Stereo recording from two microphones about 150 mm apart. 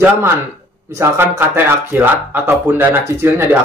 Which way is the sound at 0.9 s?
15° right (ahead or behind).